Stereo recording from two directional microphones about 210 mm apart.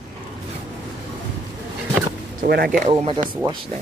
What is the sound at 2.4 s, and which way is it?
Speech, 45° right (ahead or behind).